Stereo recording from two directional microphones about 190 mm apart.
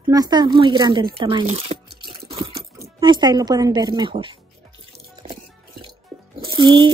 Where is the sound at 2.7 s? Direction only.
20° right (ahead or behind).